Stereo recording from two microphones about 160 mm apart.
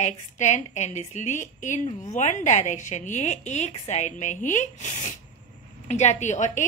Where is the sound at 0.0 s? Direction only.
45° left (ahead or behind).